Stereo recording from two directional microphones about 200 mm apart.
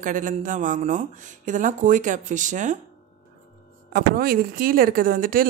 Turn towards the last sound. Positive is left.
turn(degrees=-45)  # may be behind; listen again after turning